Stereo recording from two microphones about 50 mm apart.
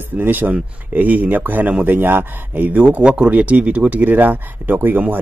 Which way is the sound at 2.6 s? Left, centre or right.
Right.